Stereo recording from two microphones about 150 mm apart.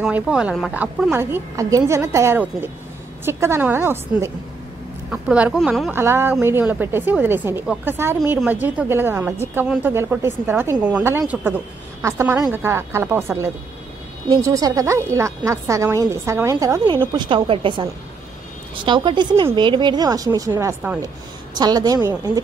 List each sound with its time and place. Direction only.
0.0 s speech: 5° right (ahead or behind)
1.1 s a woman's voice: 15° right (ahead or behind)
14.3 s a woman's voice: 25° right (ahead or behind)
18.9 s a woman's voice: 30° right (ahead or behind)